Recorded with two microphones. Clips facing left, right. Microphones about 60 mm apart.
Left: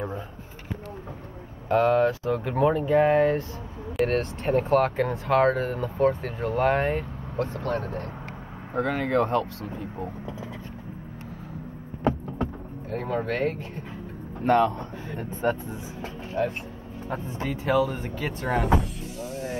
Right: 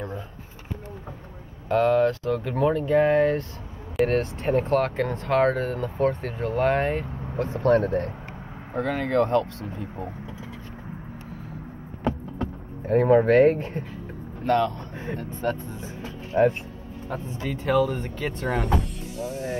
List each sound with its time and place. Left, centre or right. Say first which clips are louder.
0.0 s a sound: left 1 dB; centre
1.7 s speech: right 1 dB; centre
7.6 s speech: right 9 dB; right
8.7 s speech: right 1 dB; centre
12.8 s speech: right 11 dB; right
14.4 s speech: left 2 dB; left
16.3 s speech: right 7 dB; right
17.1 s speech: even; centre